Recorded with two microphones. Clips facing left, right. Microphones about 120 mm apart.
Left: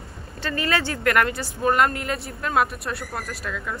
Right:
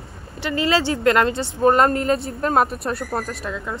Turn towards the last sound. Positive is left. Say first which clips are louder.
# right 3 dB
turn(degrees=-25)  # may be behind; listen again after turning